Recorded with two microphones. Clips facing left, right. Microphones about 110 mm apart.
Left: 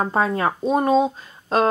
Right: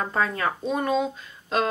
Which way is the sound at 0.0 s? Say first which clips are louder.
Left 5 dB; 30° left (ahead or behind).